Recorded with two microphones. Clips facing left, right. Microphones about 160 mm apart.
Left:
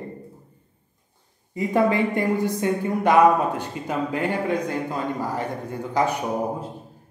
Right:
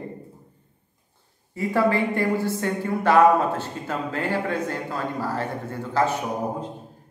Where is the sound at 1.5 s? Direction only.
20° left (ahead or behind).